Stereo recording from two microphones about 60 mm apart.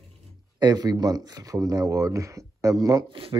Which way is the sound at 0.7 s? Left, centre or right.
Right.